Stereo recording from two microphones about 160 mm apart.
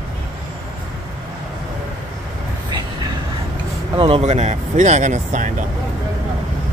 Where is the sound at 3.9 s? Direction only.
35° right (ahead or behind); by 5.7 s 50° right (ahead or behind).